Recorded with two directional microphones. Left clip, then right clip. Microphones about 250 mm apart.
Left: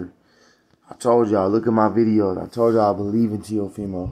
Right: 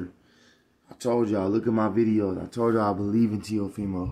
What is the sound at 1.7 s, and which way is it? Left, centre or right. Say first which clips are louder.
Speech: left 6 dB; centre.